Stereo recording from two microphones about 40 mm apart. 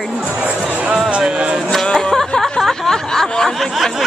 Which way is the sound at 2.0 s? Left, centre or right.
Centre.